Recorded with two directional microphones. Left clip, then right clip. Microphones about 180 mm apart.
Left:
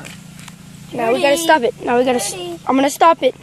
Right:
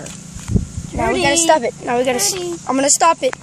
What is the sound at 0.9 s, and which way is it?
Speech, 35° left (ahead or behind).